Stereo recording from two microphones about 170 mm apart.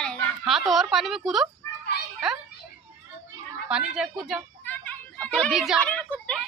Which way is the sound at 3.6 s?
5° right (ahead or behind).